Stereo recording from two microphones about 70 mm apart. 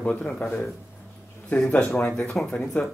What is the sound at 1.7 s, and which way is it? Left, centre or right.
Speech, centre.